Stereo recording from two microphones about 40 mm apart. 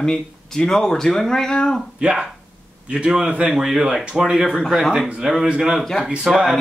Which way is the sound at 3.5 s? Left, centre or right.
Centre.